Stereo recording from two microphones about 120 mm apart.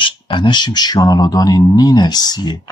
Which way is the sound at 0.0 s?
45° left (ahead or behind).